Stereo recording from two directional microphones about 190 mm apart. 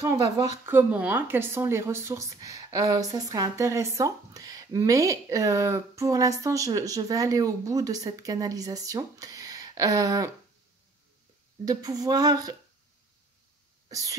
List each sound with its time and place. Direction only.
0.0 s a woman's voice: 15° right (ahead or behind)
11.6 s speech: 20° right (ahead or behind)
13.8 s cough: 20° right (ahead or behind)